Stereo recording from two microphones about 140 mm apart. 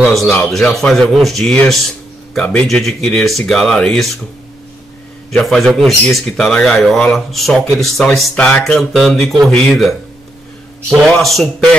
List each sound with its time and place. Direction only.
0.0 s speech: centre (ahead or behind)
5.3 s speech: centre (ahead or behind)
11.0 s speech: centre (ahead or behind)